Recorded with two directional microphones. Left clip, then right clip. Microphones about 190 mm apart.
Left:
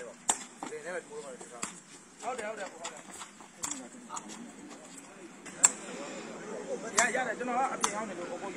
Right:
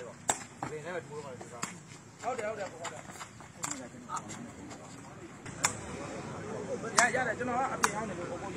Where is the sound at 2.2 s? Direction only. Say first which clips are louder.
Right 2 dB; 50° right (ahead or behind).